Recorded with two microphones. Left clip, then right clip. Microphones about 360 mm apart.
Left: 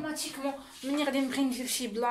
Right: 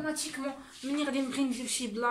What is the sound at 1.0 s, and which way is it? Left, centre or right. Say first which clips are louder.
Speech: left 2 dB; centre.